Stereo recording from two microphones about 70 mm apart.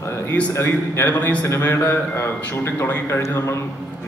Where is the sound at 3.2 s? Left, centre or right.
Left.